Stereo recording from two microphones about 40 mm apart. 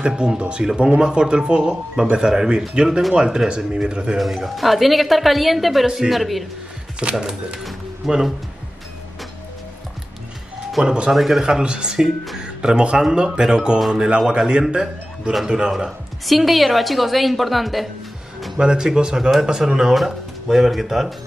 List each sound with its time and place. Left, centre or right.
0.0 s speech: centre
4.2 s a woman's voice: centre
7.0 s speech: right
8.0 s a woman's voice: centre
10.8 s speech: centre
11.1 s a woman's voice: centre
11.4 s a man's voice: right
15.7 s a woman's voice: centre
18.6 s speech: centre